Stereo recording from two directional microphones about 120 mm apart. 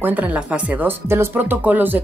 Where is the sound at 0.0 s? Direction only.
15° right (ahead or behind).